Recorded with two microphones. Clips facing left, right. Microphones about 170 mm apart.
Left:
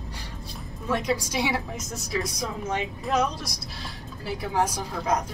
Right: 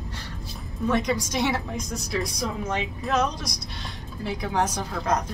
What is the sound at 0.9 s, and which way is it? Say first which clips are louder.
A woman's voice: right 1 dB; 5° left (ahead or behind).